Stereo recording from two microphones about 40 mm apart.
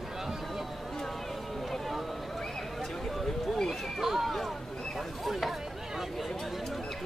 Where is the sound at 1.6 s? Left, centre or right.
Centre.